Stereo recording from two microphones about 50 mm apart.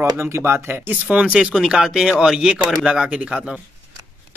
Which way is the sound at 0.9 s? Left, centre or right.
Right.